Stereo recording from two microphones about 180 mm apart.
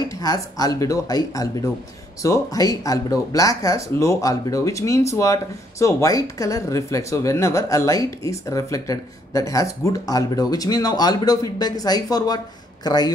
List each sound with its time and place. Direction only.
0.2 s speech: 20° left (ahead or behind)